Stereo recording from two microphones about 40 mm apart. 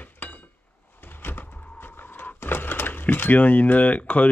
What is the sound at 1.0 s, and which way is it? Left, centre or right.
Door, left.